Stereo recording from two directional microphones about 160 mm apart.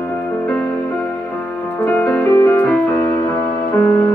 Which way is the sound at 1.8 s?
10° left (ahead or behind).